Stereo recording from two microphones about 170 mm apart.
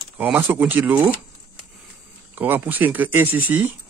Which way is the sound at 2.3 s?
10° right (ahead or behind).